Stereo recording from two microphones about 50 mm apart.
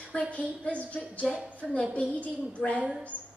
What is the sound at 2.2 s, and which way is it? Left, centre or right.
Speech, left.